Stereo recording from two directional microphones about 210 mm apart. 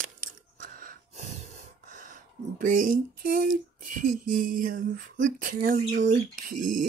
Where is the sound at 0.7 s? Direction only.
40° right (ahead or behind).